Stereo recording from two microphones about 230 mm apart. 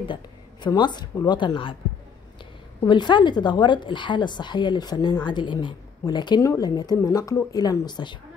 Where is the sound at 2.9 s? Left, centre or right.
Centre.